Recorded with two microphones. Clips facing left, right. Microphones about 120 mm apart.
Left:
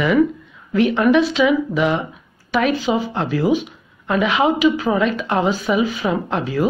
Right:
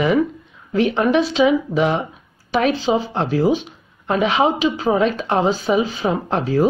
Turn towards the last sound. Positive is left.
turn(degrees=-35)  # may be behind; listen again after turning